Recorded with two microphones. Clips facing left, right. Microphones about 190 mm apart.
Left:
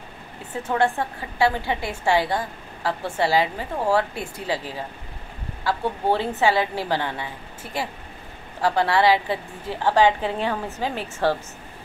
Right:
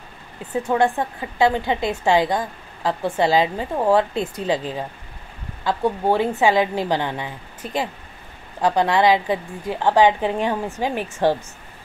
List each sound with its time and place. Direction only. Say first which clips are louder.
0.6 s a woman's voice: right 3 dB; 15° right (ahead or behind)